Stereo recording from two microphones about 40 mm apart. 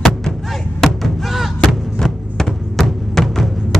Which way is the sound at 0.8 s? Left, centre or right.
Centre.